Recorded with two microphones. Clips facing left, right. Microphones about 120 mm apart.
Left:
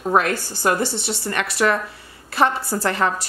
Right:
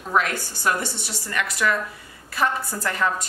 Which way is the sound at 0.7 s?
65° left (ahead or behind).